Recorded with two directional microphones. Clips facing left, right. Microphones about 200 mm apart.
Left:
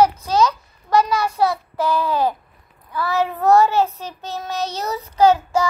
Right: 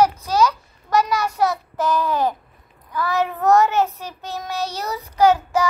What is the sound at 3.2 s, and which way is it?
Child singing, 15° left (ahead or behind).